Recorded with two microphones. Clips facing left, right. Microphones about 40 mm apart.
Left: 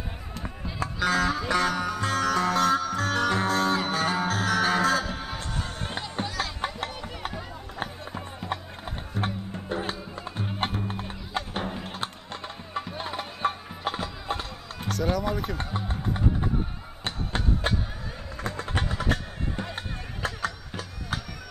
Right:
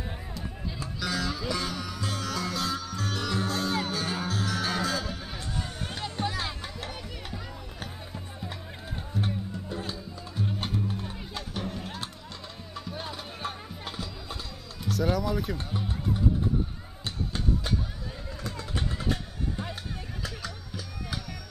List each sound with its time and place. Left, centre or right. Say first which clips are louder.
0.7 s music: left 8 dB; left
5.4 s a sound: left 2 dB; left
6.6 s music: left 9 dB; left
7.3 s music: left 5 dB; left
14.9 s speech: even; centre
15.5 s music: left 2 dB; left